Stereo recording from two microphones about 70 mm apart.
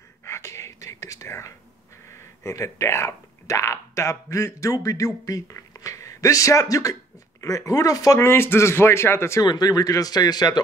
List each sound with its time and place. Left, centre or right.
0.2 s whispering: left
2.4 s speech: left
8.2 s speech: left
9.4 s speech: left